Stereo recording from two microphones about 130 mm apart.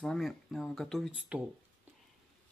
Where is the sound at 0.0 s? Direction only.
Centre (ahead or behind).